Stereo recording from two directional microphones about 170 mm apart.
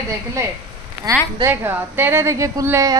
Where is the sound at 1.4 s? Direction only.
15° right (ahead or behind).